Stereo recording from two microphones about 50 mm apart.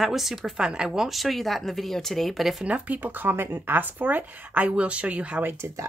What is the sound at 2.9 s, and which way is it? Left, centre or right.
Speech, right.